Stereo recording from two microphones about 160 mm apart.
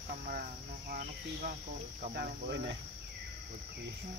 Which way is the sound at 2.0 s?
80° right.